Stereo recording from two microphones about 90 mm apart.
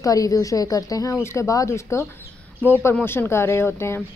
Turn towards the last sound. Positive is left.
turn(degrees=25)  # may be behind; listen again after turning